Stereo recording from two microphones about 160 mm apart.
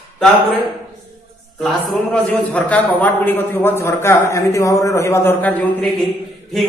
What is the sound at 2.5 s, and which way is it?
A man's voice, 10° left (ahead or behind).